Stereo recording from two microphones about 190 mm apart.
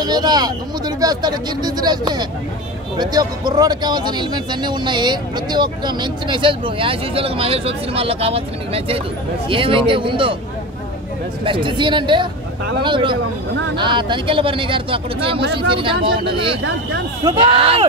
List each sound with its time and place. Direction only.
0.0 s speech: 20° right (ahead or behind)
11.4 s speech: 25° right (ahead or behind)